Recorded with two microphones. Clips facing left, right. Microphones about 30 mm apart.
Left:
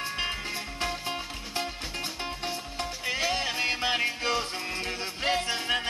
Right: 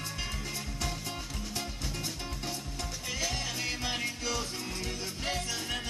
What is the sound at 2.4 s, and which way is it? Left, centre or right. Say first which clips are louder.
Music: left 4 dB; left.